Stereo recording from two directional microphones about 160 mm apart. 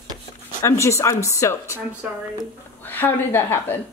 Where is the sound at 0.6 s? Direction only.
20° left (ahead or behind).